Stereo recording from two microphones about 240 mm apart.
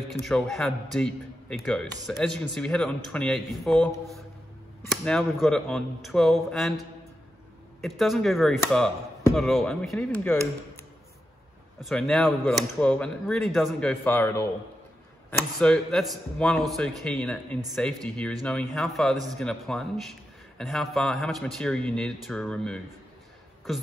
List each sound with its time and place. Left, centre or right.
0.1 s a man's voice: centre
7.8 s a man's voice: centre
11.8 s a man's voice: centre
15.6 s a man's voice: centre